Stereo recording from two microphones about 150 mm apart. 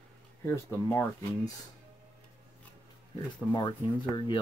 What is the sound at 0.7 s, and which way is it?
Speech, 15° left (ahead or behind).